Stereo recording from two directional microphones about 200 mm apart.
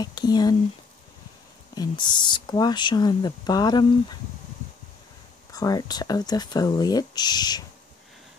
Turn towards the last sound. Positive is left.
turn(degrees=20)  # may be behind; listen again after turning